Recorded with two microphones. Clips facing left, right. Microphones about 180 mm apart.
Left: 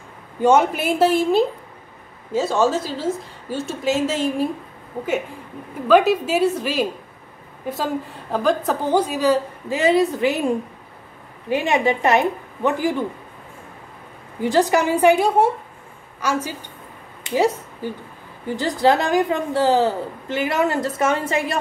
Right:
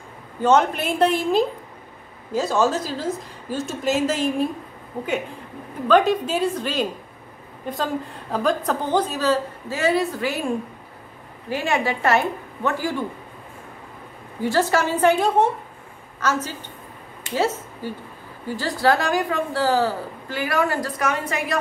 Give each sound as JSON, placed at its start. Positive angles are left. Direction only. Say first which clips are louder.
{"t": 0.4, "sound": "a woman's voice", "louder": "left 2 dB", "side_deg": 10}
{"t": 5.9, "sound": "a woman's voice", "louder": "left 2 dB", "side_deg": 5}
{"t": 14.4, "sound": "a woman's voice", "louder": "left 3 dB", "side_deg": 15}
{"t": 18.6, "sound": "a woman's voice", "louder": "left 3 dB", "side_deg": 20}